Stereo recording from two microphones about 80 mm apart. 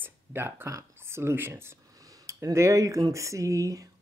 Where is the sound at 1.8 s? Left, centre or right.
Right.